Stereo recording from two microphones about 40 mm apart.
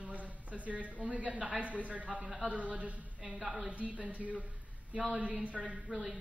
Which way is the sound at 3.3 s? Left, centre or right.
Centre.